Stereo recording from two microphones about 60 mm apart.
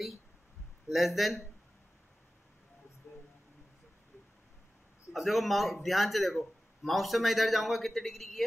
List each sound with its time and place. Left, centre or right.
0.8 s a man's voice: centre
3.1 s a sound: left
5.1 s a man's voice: centre